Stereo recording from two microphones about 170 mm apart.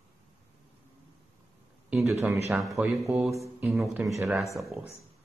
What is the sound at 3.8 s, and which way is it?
Speech, 5° right (ahead or behind).